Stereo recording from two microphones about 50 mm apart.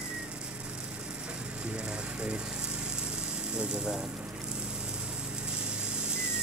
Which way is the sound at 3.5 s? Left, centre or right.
Centre.